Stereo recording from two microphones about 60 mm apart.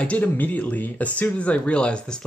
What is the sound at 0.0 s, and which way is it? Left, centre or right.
Speech, left.